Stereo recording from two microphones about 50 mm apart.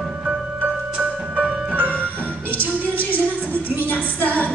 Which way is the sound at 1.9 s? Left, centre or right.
Left.